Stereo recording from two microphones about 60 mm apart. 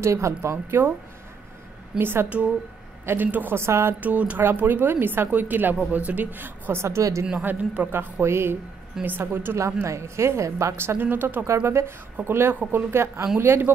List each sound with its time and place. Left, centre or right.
0.0 s speech: right
2.0 s a woman's voice: right
2.2 s a man's voice: right
3.5 s speech: right
4.0 s a man's voice: right
6.8 s speech: right
7.4 s a man's voice: right
7.9 s a woman's voice: right
9.8 s speech: right
11.4 s a woman's voice: right